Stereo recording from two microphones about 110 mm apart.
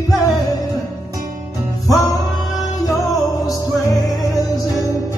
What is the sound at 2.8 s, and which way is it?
Music, 35° left (ahead or behind).